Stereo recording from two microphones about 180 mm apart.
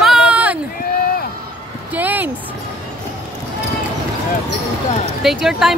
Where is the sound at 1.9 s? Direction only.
10° right (ahead or behind).